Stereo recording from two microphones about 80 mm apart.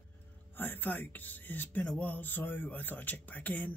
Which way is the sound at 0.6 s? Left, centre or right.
Left.